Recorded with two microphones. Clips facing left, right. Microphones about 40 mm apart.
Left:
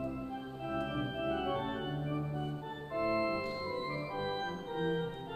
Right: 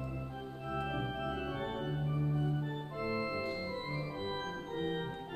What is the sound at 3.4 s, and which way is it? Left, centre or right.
Organ, centre.